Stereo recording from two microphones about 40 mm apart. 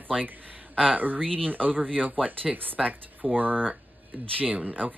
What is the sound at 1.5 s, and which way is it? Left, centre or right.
Speech, right.